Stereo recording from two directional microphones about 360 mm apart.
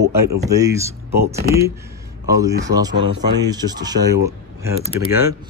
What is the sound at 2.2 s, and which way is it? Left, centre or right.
A man's voice, centre.